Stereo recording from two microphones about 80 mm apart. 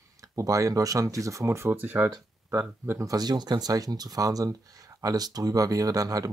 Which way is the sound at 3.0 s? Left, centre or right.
Right.